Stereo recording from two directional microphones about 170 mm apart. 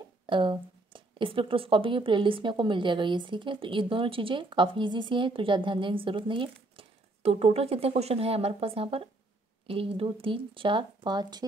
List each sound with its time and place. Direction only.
0.3 s speech: 30° right (ahead or behind)